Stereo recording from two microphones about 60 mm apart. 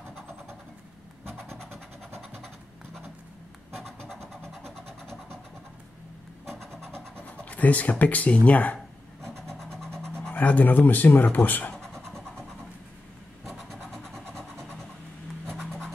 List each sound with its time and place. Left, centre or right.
4.2 s vehicle: centre
6.4 s a sound: centre
7.4 s speech: left
9.2 s vehicle: centre
10.3 s speech: left
11.7 s vehicle: centre
13.5 s vehicle: centre
15.5 s scratch: centre